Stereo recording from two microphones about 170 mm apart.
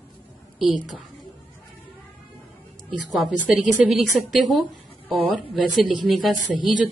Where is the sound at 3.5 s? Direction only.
5° right (ahead or behind).